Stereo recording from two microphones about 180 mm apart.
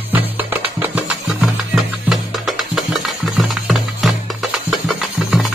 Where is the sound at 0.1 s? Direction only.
10° right (ahead or behind).